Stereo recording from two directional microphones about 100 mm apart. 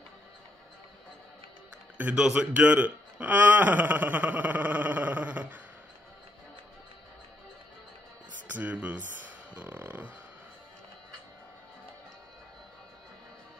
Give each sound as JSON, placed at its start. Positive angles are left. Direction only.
{"t": 2.0, "sound": "speech", "side_deg": -10}
{"t": 8.5, "sound": "speech", "side_deg": -15}
{"t": 9.5, "sound": "beatboxing", "side_deg": -20}